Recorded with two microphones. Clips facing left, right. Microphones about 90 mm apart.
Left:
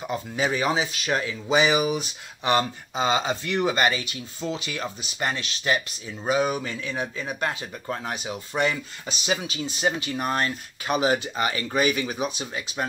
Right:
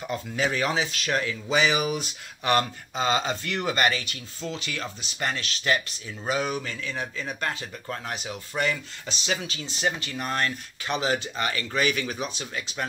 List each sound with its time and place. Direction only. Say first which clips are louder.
0.0 s speech: left 1 dB; 10° left (ahead or behind)